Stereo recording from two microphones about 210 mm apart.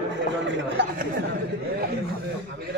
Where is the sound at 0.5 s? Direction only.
60° right (ahead or behind).